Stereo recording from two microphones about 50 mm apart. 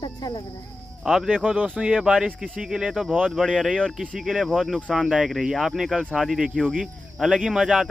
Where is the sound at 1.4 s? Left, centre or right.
Right.